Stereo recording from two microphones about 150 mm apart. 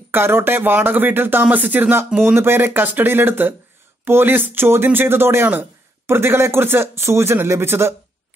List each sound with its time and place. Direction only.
0.1 s speech: 15° right (ahead or behind)